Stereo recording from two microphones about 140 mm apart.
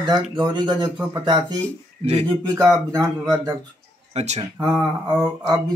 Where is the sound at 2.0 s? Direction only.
50° right (ahead or behind).